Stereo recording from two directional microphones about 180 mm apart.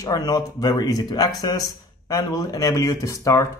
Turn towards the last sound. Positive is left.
turn(degrees=15)  # may be behind; listen again after turning